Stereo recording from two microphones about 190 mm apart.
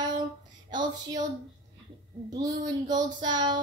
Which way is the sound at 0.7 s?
20° right (ahead or behind).